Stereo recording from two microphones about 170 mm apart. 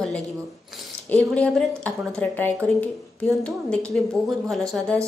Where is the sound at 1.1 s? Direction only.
10° left (ahead or behind).